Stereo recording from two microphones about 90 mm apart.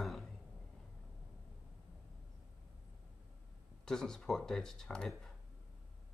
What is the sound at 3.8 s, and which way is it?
Speech, 5° left (ahead or behind).